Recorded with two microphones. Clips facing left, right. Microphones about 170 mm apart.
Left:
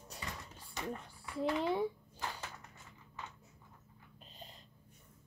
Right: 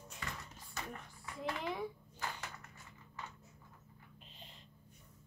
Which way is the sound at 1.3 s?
30° left (ahead or behind).